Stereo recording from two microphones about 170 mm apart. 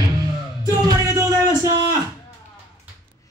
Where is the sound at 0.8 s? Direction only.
20° right (ahead or behind).